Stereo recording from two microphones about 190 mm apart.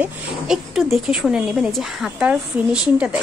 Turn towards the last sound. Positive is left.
turn(degrees=-5)  # may be behind; listen again after turning